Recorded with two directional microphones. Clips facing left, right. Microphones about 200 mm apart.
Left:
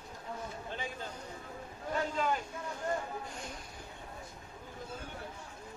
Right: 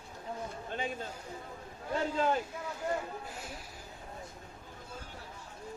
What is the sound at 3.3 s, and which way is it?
Speech, 5° right (ahead or behind).